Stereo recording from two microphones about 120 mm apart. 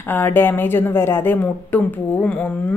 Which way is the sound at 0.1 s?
15° left (ahead or behind).